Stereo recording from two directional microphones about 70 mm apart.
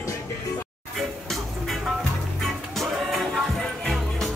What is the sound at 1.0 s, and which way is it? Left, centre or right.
Music, centre.